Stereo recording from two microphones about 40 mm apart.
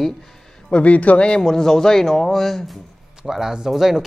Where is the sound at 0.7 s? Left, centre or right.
Left.